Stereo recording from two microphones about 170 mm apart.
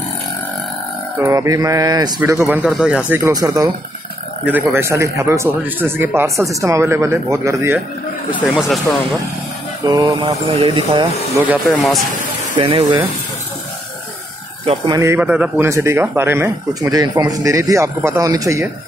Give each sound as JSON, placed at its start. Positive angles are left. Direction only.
{"t": 1.2, "sound": "mantra", "side_deg": -20}
{"t": 2.2, "sound": "speech", "side_deg": -10}
{"t": 3.3, "sound": "mantra", "side_deg": -20}
{"t": 4.5, "sound": "speech", "side_deg": -10}
{"t": 8.5, "sound": "speech", "side_deg": 0}
{"t": 9.8, "sound": "mantra", "side_deg": -20}
{"t": 10.2, "sound": "speech", "side_deg": -35}
{"t": 11.3, "sound": "speech", "side_deg": -10}
{"t": 12.5, "sound": "mantra", "side_deg": -30}
{"t": 14.9, "sound": "speech", "side_deg": -15}